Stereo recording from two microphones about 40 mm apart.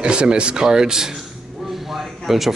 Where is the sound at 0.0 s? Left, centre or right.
Right.